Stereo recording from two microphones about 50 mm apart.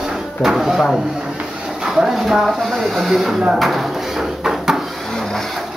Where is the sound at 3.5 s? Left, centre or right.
Centre.